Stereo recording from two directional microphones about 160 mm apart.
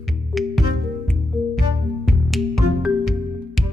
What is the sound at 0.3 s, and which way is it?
Music, centre (ahead or behind).